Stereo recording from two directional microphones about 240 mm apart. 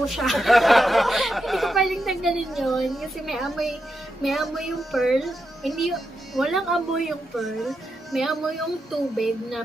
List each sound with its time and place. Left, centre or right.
0.0 s speech: centre